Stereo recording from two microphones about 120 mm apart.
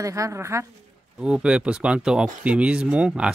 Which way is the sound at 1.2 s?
10° right (ahead or behind).